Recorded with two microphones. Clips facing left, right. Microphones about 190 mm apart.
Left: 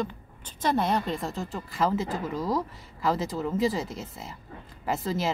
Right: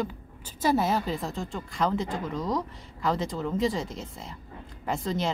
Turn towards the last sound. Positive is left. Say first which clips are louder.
# left 1 dB
turn(degrees=5)  # may be behind; listen again after turning